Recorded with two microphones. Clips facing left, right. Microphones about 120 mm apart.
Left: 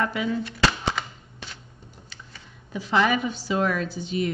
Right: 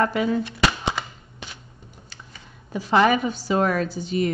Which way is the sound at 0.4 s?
20° right (ahead or behind).